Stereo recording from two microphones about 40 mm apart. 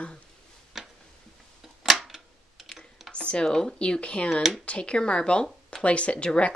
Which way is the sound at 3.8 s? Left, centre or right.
Left.